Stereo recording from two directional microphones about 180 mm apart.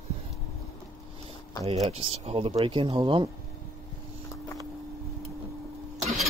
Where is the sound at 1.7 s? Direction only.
35° right (ahead or behind).